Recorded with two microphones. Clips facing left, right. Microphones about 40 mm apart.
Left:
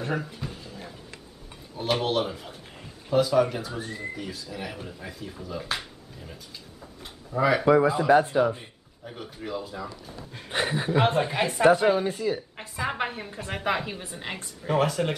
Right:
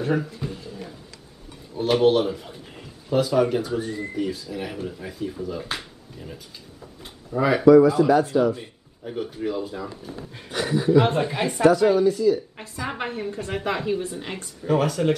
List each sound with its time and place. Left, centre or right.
0.0 s speech: centre
0.4 s a sound: centre
1.8 s speech: centre
7.6 s speech: left
9.0 s speech: centre
10.5 s speech: left
11.1 s speech: centre
11.6 s speech: left
12.5 s a woman's voice: centre